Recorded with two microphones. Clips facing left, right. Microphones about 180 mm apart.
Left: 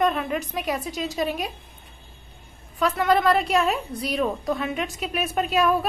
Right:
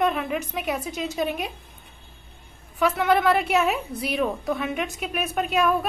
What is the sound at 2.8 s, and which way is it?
A woman's voice, 5° right (ahead or behind).